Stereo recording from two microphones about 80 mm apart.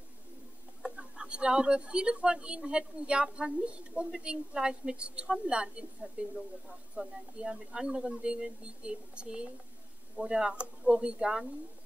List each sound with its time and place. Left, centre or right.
0.8 s speech: centre